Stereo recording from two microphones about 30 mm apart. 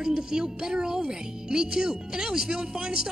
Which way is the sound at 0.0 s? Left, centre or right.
Right.